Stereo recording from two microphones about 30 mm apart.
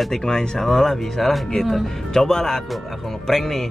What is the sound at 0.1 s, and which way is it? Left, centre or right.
Speech, centre.